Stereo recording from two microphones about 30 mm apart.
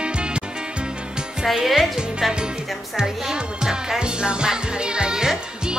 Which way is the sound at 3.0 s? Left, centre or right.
Right.